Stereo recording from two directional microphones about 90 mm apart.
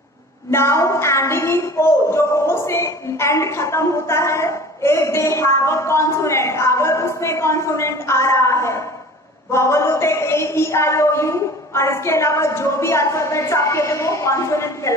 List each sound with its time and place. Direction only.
0.5 s a woman's voice: 30° left (ahead or behind)